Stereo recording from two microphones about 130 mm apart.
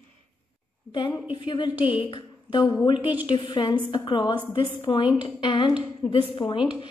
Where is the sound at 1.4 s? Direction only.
35° left (ahead or behind).